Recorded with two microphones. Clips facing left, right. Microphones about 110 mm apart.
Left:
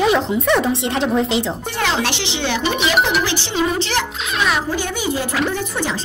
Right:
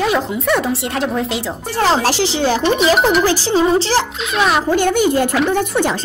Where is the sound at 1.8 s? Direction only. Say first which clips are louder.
Right 7 dB; 35° right (ahead or behind).